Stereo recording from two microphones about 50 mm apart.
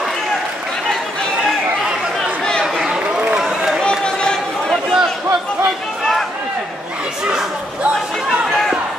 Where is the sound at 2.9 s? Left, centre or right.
Centre.